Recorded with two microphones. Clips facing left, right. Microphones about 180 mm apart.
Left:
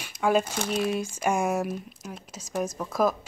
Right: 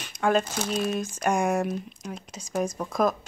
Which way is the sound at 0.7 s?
10° left (ahead or behind).